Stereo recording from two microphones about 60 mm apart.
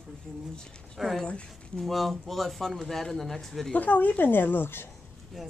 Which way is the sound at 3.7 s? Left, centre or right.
Left.